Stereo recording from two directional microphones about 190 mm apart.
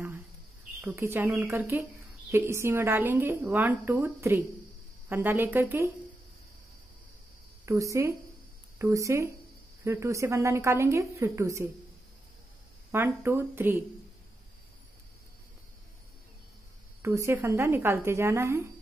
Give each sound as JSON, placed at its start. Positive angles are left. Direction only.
{"t": 0.7, "sound": "a woman's voice", "side_deg": -10}
{"t": 7.6, "sound": "a woman's voice", "side_deg": -15}
{"t": 12.9, "sound": "a woman's voice", "side_deg": -10}
{"t": 17.0, "sound": "a woman's voice", "side_deg": -15}